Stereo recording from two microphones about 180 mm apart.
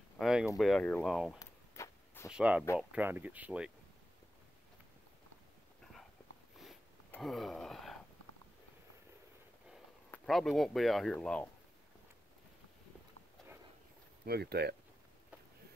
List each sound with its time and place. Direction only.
0.2 s a sound: 5° right (ahead or behind)
0.6 s speech: centre (ahead or behind)
1.4 s a sound: 15° left (ahead or behind)
2.3 s speech: 5° right (ahead or behind)
7.2 s gasp: centre (ahead or behind)
10.2 s speech: centre (ahead or behind)
14.2 s speech: 60° right (ahead or behind)